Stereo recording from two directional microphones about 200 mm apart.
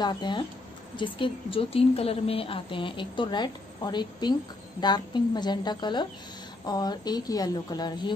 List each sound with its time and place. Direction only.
0.0 s a woman's voice: 20° left (ahead or behind)